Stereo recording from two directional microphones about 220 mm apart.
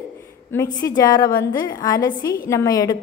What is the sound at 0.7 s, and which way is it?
A woman's voice, 15° left (ahead or behind).